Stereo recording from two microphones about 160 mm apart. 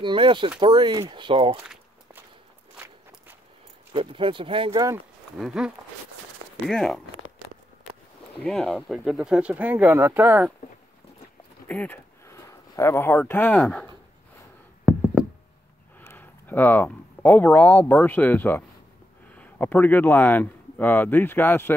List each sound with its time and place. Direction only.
0.0 s speech: 30° right (ahead or behind)
3.9 s speech: 35° right (ahead or behind)
5.4 s speech: 5° right (ahead or behind)
8.5 s speech: centre (ahead or behind); by 10.5 s 15° right (ahead or behind)
11.6 s speech: 10° left (ahead or behind)
14.9 s knock: 10° right (ahead or behind)
16.0 s speech: 15° left (ahead or behind)